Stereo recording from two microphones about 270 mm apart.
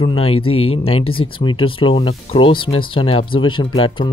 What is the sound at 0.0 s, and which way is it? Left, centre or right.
Speech, left.